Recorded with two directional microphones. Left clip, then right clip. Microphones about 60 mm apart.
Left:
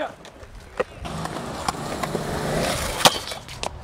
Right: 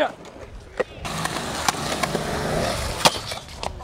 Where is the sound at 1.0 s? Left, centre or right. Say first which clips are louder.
Right 4 dB; right.